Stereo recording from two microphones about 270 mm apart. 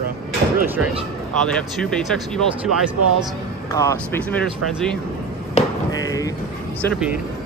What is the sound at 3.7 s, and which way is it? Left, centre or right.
Speech, centre.